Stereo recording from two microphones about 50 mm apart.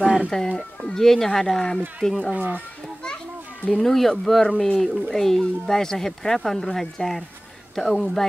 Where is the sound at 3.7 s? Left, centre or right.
Centre.